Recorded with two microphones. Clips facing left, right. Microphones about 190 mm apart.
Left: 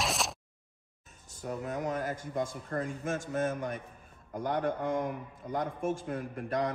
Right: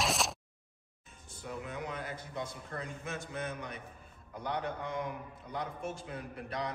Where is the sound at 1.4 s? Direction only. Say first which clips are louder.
Left 6 dB; 45° left (ahead or behind).